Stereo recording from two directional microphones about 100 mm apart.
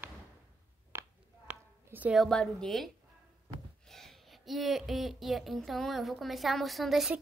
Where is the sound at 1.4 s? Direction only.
15° right (ahead or behind).